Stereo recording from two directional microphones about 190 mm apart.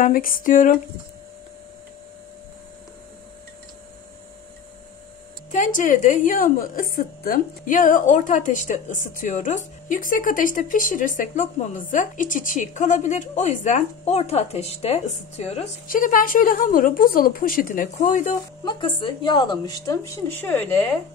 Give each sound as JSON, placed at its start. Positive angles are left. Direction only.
{"t": 0.0, "sound": "a woman's voice", "side_deg": 45}
{"t": 5.5, "sound": "a woman's voice", "side_deg": 40}
{"t": 18.3, "sound": "a woman's voice", "side_deg": 25}